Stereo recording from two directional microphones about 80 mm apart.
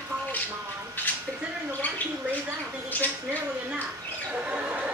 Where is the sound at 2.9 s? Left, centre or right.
Left.